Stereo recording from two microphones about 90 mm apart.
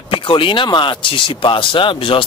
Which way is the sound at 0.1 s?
70° left (ahead or behind).